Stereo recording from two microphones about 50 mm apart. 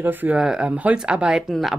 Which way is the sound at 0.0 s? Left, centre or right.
Right.